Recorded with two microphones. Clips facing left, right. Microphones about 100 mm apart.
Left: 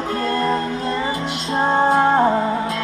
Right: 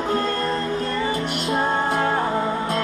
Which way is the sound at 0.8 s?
30° left (ahead or behind).